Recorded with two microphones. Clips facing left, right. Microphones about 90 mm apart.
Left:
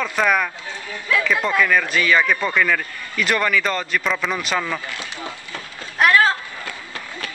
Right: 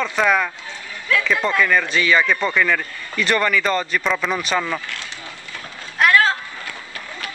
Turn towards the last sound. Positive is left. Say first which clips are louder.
# even
turn(degrees=5)  # may be behind; listen again after turning